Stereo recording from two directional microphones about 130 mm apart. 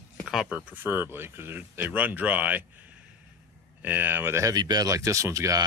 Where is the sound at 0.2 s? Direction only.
5° right (ahead or behind).